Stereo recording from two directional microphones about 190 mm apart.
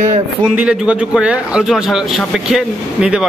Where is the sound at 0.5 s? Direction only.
5° right (ahead or behind).